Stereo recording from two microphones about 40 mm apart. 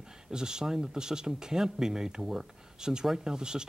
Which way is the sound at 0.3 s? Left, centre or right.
Centre.